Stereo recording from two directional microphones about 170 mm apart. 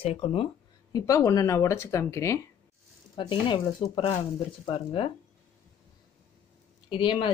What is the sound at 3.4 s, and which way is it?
Speech, 30° left (ahead or behind).